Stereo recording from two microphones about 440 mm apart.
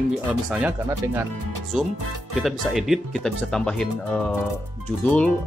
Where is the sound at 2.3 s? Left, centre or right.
Centre.